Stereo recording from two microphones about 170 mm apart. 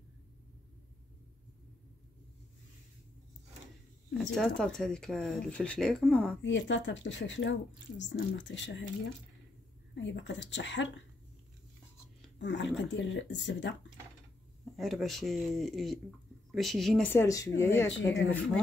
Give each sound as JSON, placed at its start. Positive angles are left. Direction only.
{"t": 4.4, "sound": "speech", "side_deg": 5}
{"t": 6.4, "sound": "speech", "side_deg": 90}
{"t": 9.9, "sound": "speech", "side_deg": 90}
{"t": 12.4, "sound": "speech", "side_deg": 90}
{"t": 14.6, "sound": "speech", "side_deg": 0}
{"t": 17.1, "sound": "speech", "side_deg": 20}
{"t": 17.8, "sound": "speech", "side_deg": 90}